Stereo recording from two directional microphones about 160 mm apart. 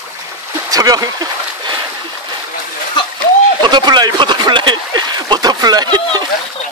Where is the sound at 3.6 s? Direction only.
30° right (ahead or behind).